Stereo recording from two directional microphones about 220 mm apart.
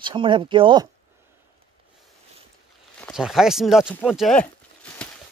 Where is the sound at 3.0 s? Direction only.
Centre (ahead or behind).